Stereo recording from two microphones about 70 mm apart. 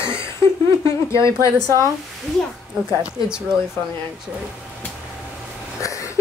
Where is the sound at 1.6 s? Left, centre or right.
Right.